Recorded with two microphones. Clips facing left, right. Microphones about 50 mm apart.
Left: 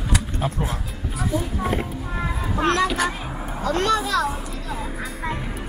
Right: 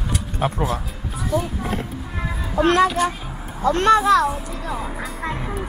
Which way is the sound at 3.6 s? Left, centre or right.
Right.